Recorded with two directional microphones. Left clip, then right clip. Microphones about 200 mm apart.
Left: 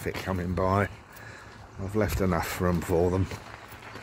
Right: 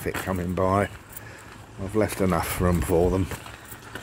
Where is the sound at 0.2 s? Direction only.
Centre (ahead or behind).